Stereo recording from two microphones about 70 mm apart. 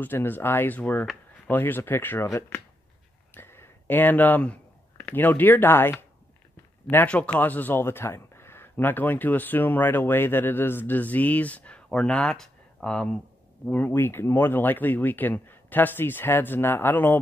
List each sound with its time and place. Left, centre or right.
0.0 s speech: left
3.3 s speech: left
7.1 s speech: centre
13.7 s speech: left
13.9 s speech: left